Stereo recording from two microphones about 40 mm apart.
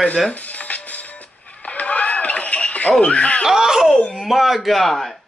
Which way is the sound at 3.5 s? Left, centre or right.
Centre.